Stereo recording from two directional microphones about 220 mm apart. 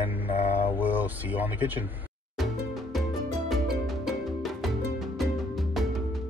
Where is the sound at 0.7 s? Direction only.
10° right (ahead or behind).